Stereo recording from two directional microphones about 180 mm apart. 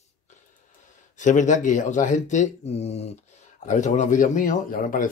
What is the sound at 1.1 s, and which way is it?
Speech, 45° left (ahead or behind).